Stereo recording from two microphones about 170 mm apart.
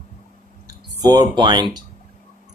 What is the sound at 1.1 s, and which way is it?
Speech, 25° right (ahead or behind).